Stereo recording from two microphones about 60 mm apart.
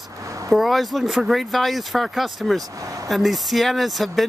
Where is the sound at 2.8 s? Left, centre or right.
Right.